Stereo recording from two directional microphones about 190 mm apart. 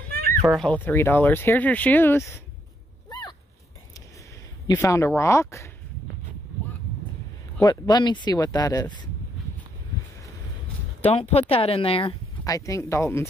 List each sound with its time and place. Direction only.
0.4 s speech: centre (ahead or behind)
3.1 s a sound: 20° left (ahead or behind)
4.6 s speech: 15° left (ahead or behind)
7.6 s speech: 20° left (ahead or behind)
11.1 s speech: 35° left (ahead or behind)
12.4 s speech: 15° left (ahead or behind)